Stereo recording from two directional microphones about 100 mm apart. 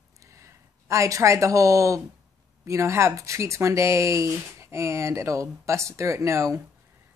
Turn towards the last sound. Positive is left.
turn(degrees=-30)  # may be behind; listen again after turning